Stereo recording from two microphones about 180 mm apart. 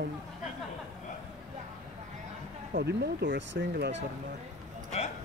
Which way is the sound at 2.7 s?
70° right (ahead or behind).